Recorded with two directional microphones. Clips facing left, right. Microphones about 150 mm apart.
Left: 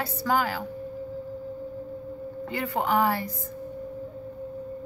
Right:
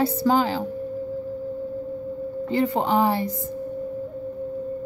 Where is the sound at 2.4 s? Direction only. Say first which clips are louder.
Right 6 dB; 25° right (ahead or behind).